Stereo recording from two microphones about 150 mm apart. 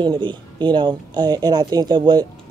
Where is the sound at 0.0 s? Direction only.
30° right (ahead or behind).